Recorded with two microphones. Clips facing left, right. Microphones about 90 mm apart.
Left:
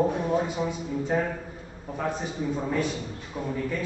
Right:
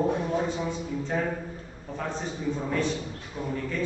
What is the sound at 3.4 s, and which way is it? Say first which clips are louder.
Speech: left 2 dB; 15° left (ahead or behind).